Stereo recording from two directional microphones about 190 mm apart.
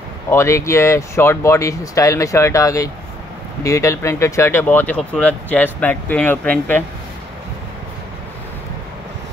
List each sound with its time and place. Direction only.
0.3 s speech: 15° left (ahead or behind)